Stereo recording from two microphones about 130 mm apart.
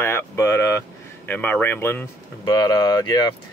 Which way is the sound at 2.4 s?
35° left (ahead or behind).